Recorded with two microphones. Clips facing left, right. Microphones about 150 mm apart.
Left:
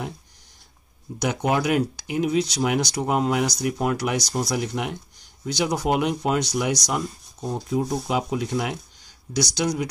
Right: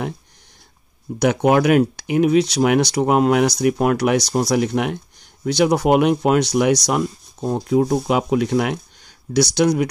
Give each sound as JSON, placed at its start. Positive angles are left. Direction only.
{"t": 1.2, "sound": "speech", "side_deg": -60}